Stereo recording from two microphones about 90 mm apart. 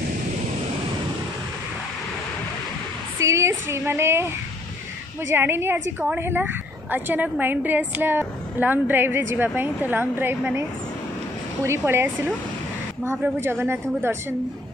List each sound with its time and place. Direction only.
3.2 s a sound: 35° right (ahead or behind)
5.3 s a woman's voice: 25° right (ahead or behind)
11.6 s a woman's voice: 30° right (ahead or behind)